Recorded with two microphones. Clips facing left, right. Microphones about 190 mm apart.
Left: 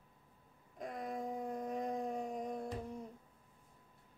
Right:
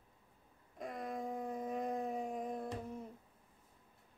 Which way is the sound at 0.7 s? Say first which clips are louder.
Even; centre (ahead or behind).